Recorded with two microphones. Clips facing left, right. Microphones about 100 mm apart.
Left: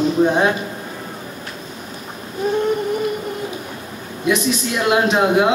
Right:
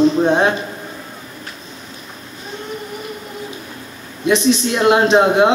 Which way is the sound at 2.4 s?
55° left (ahead or behind).